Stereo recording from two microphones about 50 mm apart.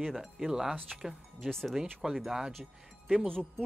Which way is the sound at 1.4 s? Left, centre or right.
Centre.